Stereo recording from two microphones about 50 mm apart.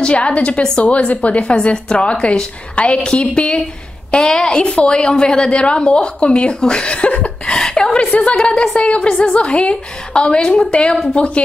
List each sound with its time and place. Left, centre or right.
0.0 s a woman's voice: left
7.5 s a woman's voice: centre